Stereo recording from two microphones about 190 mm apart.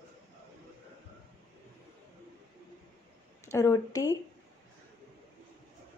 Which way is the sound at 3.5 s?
15° left (ahead or behind).